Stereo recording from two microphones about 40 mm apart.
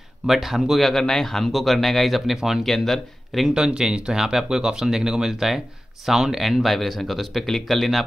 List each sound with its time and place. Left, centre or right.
0.3 s a man's voice: centre
2.6 s a man's voice: centre
3.5 s speech: centre
6.6 s a man's voice: centre